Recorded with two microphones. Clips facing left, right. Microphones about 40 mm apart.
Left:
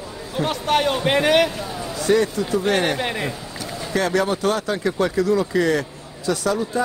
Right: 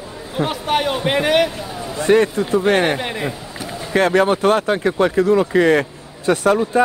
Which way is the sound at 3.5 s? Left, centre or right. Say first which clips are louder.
Right 2 dB; centre.